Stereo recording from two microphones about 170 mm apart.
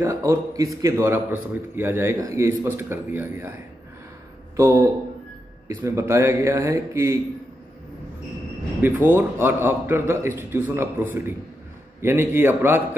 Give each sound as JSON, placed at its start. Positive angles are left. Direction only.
{"t": 0.0, "sound": "a man's voice", "side_deg": -20}
{"t": 4.6, "sound": "a man's voice", "side_deg": -20}
{"t": 8.8, "sound": "a man's voice", "side_deg": -15}